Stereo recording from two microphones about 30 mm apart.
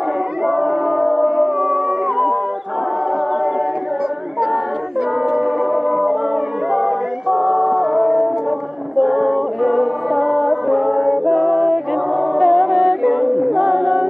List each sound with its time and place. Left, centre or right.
0.5 s a sound: centre
1.2 s music: right
5.2 s a sound: right
6.7 s a capella: centre
8.9 s music: centre
13.4 s music: centre